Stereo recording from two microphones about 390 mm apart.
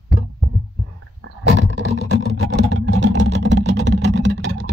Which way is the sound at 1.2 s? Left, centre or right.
Right.